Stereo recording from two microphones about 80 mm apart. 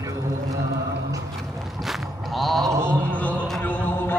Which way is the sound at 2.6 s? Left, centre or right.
Right.